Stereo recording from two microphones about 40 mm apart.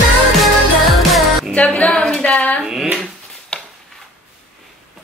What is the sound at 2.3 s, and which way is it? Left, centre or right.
Speech, left.